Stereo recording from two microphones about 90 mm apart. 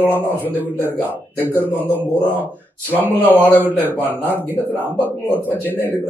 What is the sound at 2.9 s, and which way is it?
Speech, 20° left (ahead or behind).